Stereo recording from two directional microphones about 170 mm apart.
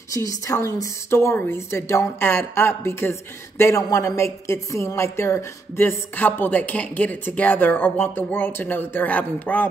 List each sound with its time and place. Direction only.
0.1 s a woman's voice: 20° left (ahead or behind)